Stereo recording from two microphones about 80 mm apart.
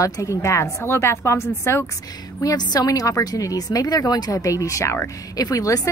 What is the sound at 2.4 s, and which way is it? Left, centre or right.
A woman's voice, left.